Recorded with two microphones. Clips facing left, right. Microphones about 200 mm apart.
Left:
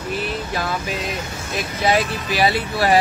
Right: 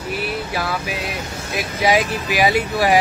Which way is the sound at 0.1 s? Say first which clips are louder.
Right 1 dB; 10° right (ahead or behind).